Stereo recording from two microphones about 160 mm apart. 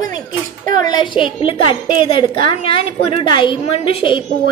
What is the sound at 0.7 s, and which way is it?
A woman's voice, 25° left (ahead or behind).